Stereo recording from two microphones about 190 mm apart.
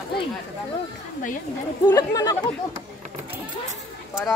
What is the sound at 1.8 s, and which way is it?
Speech, 15° left (ahead or behind).